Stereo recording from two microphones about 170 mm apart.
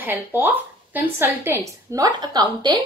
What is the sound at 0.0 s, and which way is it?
Speech, 10° right (ahead or behind).